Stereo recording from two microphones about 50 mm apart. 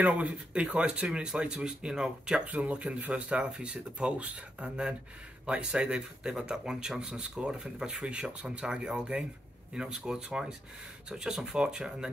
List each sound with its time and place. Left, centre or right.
0.0 s speech: right
2.4 s speech: right